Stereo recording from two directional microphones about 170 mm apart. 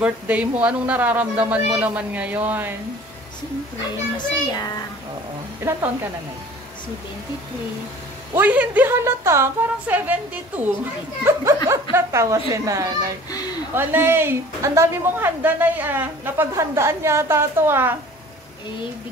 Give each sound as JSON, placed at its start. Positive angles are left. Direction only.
{"t": 0.0, "sound": "a woman's voice", "side_deg": -10}
{"t": 4.2, "sound": "a child's voice", "side_deg": 20}
{"t": 5.6, "sound": "a woman's voice", "side_deg": -15}
{"t": 8.4, "sound": "a woman's voice", "side_deg": -10}
{"t": 13.3, "sound": "speech", "side_deg": 25}
{"t": 13.7, "sound": "a woman's voice", "side_deg": -10}